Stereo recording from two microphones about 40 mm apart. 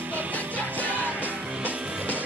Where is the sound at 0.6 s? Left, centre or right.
Left.